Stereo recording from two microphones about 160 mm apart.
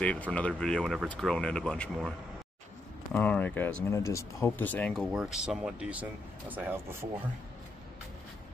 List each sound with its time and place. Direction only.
0.0 s speech: 10° left (ahead or behind); by 7.1 s 15° right (ahead or behind)